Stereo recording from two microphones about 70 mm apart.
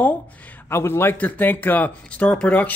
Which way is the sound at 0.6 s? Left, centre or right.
Left.